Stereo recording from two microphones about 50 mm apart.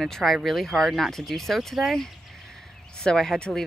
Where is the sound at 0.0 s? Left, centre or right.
Centre.